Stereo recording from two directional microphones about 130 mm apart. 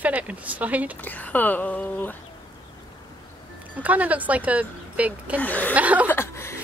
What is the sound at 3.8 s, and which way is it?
Speech, 10° right (ahead or behind).